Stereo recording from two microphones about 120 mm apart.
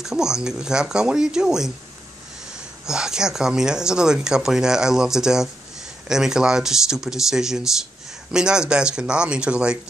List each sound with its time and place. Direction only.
0.0 s speech: 5° right (ahead or behind)
2.9 s speech: 5° right (ahead or behind)